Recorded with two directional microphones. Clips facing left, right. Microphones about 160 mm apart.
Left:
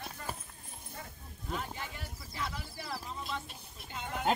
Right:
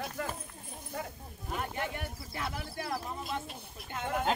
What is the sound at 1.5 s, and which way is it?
Boat, 60° right (ahead or behind).